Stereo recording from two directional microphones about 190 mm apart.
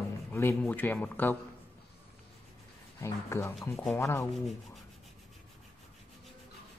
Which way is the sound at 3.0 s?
15° left (ahead or behind).